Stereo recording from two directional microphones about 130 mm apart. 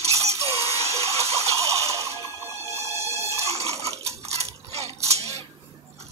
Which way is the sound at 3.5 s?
55° right (ahead or behind).